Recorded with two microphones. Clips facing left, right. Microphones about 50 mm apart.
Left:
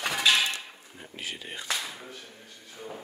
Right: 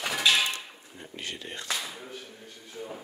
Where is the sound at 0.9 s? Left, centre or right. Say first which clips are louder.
Even; centre.